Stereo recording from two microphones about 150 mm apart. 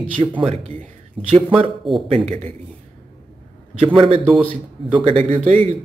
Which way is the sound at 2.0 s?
40° right (ahead or behind).